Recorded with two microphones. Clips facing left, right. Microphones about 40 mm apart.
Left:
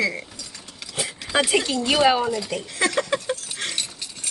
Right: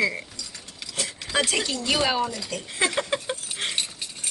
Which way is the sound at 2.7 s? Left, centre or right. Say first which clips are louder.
Left 2 dB; centre.